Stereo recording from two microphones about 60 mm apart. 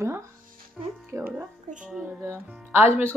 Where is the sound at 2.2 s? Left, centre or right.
Right.